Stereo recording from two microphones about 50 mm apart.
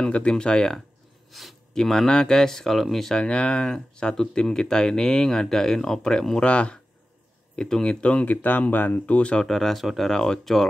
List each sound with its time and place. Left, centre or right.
0.0 s speech: centre
1.3 s speech: centre
1.7 s speech: centre
3.2 s speech: centre
6.4 s speech: left
8.4 s speech: left
9.0 s speech: left
9.4 s speech: centre
10.1 s speech: centre